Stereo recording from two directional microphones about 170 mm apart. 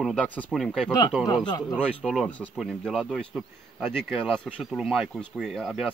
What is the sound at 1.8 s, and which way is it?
Speech, centre (ahead or behind).